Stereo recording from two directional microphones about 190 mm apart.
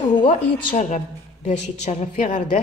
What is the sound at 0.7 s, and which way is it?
A woman's voice, 40° left (ahead or behind).